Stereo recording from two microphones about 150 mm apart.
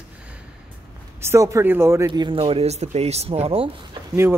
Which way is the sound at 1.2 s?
20° right (ahead or behind).